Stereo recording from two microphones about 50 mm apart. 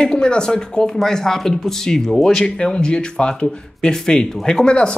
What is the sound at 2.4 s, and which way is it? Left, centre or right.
Speech, centre.